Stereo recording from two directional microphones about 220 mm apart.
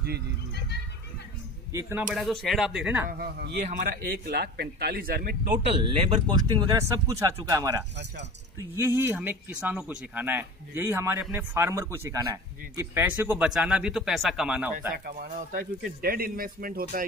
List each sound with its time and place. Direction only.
1.7 s speech: 15° right (ahead or behind)
3.1 s speech: 45° right (ahead or behind)
5.9 s speech: 25° right (ahead or behind); by 15.0 s 5° right (ahead or behind)
15.0 s speech: 40° right (ahead or behind)